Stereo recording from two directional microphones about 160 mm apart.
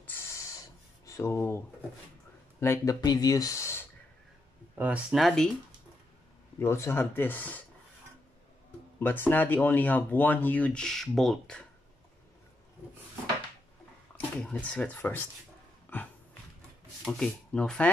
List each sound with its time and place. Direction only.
0.0 s a sound: 15° left (ahead or behind)
2.6 s speech: 20° left (ahead or behind)
4.7 s speech: 10° right (ahead or behind)
6.6 s speech: 15° left (ahead or behind)
9.0 s speech: 10° left (ahead or behind)
14.1 s speech: 10° left (ahead or behind)
15.9 s a sound: 10° left (ahead or behind)
17.0 s speech: 5° left (ahead or behind)